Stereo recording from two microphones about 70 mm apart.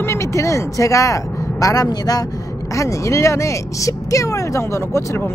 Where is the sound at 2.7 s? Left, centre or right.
Left.